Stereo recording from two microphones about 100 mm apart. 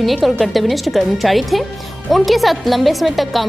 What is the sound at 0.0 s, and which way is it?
Speech, centre (ahead or behind).